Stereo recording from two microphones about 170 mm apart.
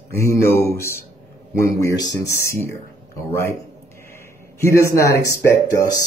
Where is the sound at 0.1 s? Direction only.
15° left (ahead or behind).